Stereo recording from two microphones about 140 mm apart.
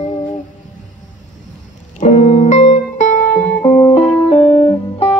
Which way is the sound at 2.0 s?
55° left (ahead or behind).